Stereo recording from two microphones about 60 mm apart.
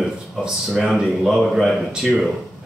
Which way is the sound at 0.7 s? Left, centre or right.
Centre.